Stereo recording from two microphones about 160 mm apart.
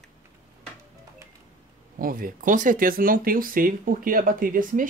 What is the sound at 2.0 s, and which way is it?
Speech, 60° right (ahead or behind).